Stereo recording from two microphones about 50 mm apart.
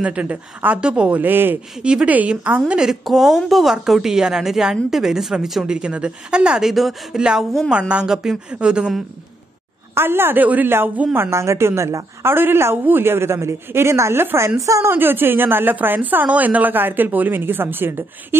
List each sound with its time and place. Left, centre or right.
0.0 s a woman's voice: right
0.7 s a woman's voice: right
1.3 s a woman's voice: right
1.8 s speech: centre
2.0 s a woman's voice: right
2.8 s speech: centre
6.6 s speech: centre
7.2 s speech: centre
9.9 s a woman's voice: right
10.4 s a woman's voice: right
11.1 s a woman's voice: right
14.8 s a woman's voice: right